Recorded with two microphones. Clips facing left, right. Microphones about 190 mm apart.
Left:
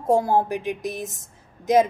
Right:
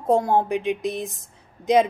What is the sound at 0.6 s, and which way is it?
Speech, 20° right (ahead or behind).